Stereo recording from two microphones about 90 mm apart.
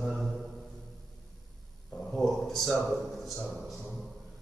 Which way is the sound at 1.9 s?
Centre (ahead or behind).